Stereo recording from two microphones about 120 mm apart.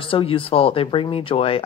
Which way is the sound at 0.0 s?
50° left (ahead or behind).